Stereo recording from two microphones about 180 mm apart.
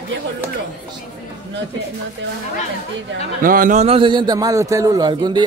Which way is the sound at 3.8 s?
30° right (ahead or behind).